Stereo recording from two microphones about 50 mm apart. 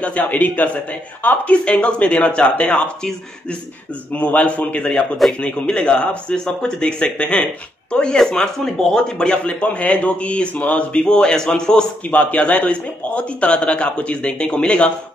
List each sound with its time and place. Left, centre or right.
0.0 s a man's voice: left
4.1 s a man's voice: left
12.1 s a man's voice: left